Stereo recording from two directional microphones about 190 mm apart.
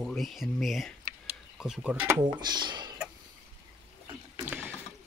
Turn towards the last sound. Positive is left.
turn(degrees=-10)  # may be behind; listen again after turning